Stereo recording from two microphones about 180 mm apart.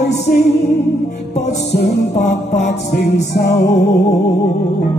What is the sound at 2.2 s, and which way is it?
Music, 40° left (ahead or behind).